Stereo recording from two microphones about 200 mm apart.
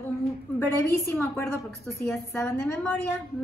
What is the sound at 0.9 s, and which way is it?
A woman's voice, 15° left (ahead or behind).